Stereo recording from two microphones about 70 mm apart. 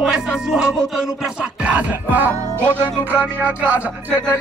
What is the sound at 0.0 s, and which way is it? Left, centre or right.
Speech, centre.